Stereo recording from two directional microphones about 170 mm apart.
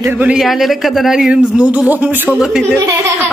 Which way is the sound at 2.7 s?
15° right (ahead or behind).